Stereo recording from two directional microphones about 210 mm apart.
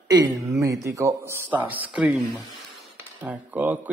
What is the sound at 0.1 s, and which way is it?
A man's voice, 15° right (ahead or behind).